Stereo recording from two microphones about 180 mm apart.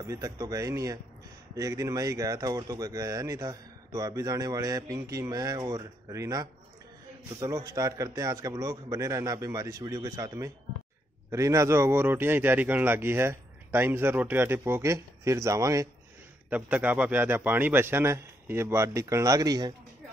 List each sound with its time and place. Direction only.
0.0 s speech: 20° right (ahead or behind)